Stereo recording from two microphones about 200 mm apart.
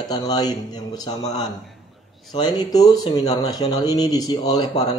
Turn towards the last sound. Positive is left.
turn(degrees=20)  # may be behind; listen again after turning